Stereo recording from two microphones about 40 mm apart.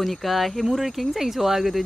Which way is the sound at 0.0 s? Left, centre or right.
Centre.